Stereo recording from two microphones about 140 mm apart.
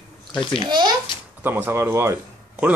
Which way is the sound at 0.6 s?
30° right (ahead or behind).